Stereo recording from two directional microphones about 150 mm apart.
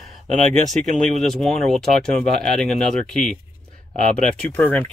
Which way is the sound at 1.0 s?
Centre (ahead or behind).